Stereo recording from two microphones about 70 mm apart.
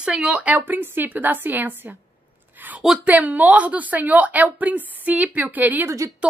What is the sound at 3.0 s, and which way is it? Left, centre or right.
A woman's voice, right.